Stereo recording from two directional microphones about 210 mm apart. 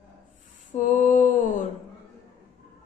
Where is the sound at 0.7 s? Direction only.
35° left (ahead or behind).